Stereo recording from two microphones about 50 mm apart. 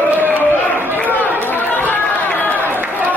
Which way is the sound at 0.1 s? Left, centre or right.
Right.